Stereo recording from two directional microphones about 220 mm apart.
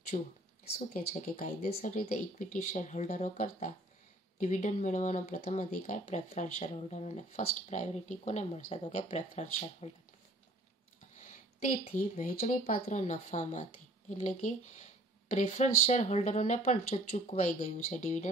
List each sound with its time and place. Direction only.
0.1 s speech: 35° left (ahead or behind)
12.2 s speech: 40° left (ahead or behind)